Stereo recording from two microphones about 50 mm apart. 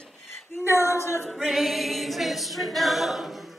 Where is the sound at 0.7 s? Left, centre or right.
Left.